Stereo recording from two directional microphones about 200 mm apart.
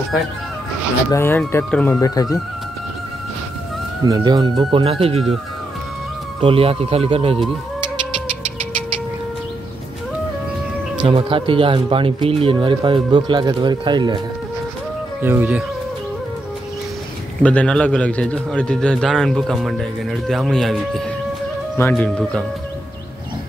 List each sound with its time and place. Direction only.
1.1 s speech: 10° left (ahead or behind)
4.0 s speech: 20° right (ahead or behind)
6.4 s speech: 30° right (ahead or behind)
11.0 s speech: 25° right (ahead or behind)
15.2 s speech: 10° right (ahead or behind)
17.4 s a man's voice: 5° left (ahead or behind)